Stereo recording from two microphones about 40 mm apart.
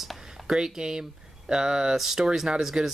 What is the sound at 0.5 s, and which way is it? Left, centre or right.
Speech, centre.